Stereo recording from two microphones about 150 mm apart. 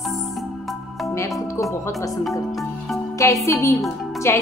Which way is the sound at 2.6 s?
Centre (ahead or behind).